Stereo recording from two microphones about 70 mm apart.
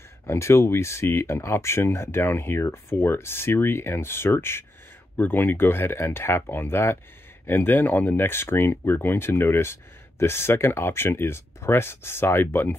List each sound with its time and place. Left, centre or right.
0.3 s speech: left